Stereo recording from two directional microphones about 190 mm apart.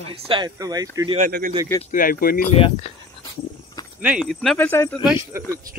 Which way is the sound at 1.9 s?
50° left (ahead or behind).